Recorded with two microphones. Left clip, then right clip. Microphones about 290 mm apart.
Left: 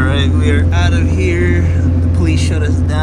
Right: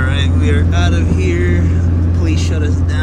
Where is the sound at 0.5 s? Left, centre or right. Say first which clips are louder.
Left 1 dB; centre.